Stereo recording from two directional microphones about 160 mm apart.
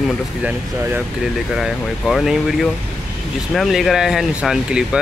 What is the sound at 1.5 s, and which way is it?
Speech, centre (ahead or behind).